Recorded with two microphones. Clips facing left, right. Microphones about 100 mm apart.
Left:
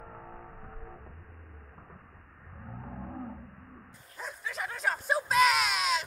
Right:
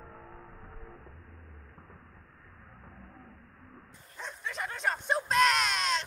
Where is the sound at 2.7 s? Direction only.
70° left (ahead or behind).